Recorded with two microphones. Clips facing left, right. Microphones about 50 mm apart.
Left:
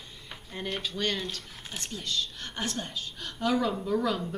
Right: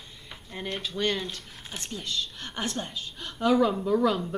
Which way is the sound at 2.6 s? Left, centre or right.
Right.